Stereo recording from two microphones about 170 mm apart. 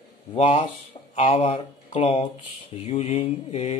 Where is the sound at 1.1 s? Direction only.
35° left (ahead or behind).